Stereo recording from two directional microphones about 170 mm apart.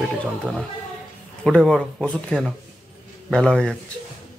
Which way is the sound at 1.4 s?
5° left (ahead or behind).